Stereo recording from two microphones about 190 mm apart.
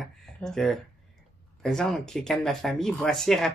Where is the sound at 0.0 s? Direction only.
Centre (ahead or behind).